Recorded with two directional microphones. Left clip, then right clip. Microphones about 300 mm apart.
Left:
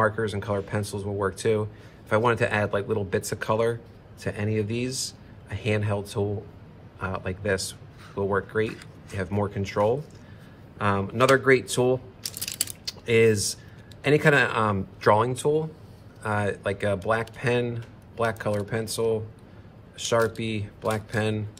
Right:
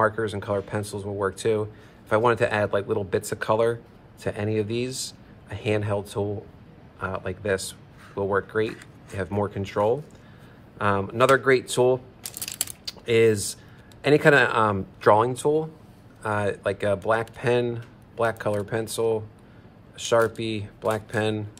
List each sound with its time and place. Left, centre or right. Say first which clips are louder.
0.0 s speech: right 1 dB; centre